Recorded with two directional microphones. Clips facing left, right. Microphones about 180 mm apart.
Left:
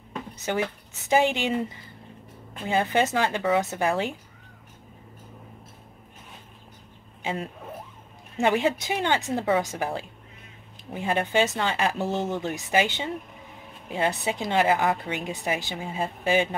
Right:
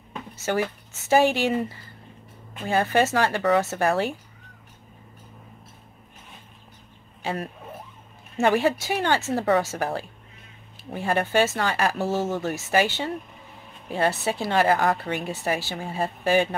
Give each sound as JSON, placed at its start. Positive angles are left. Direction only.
{"t": 1.0, "sound": "a woman's voice", "side_deg": 15}
{"t": 8.4, "sound": "a woman's voice", "side_deg": 20}
{"t": 10.9, "sound": "a woman's voice", "side_deg": 15}